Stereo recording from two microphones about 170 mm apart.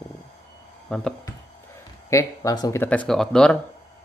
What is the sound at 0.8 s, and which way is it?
Speech, 5° left (ahead or behind).